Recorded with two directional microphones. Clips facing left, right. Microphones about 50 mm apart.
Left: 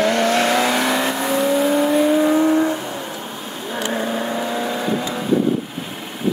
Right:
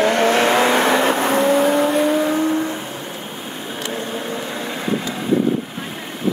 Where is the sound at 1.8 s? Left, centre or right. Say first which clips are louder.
Left 1 dB; centre.